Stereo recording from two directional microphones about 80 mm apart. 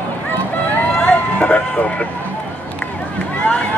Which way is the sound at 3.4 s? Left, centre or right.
Centre.